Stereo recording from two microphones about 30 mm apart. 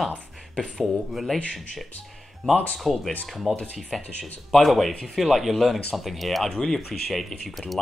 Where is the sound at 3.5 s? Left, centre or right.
Right.